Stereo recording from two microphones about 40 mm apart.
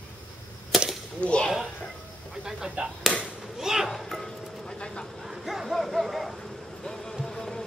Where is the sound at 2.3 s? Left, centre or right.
Centre.